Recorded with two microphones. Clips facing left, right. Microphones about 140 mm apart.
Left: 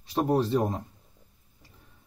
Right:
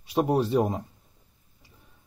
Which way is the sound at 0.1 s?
10° right (ahead or behind).